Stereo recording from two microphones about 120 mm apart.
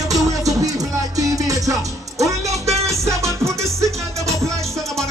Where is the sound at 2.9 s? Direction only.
25° right (ahead or behind).